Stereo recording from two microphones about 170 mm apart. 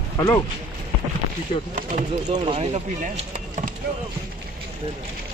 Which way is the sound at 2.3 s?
40° right (ahead or behind).